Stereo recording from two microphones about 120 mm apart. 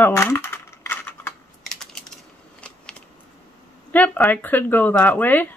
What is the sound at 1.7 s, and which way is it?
Typing, 5° left (ahead or behind).